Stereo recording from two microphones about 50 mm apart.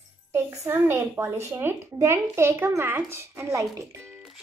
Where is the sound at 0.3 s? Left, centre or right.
Right.